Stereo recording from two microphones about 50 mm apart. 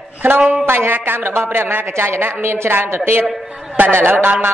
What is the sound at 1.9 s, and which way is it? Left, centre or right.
A woman's voice, right.